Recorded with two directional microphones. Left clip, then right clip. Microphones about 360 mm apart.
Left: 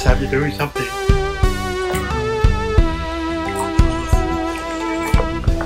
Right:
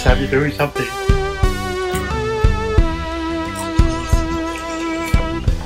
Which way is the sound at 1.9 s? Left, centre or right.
Left.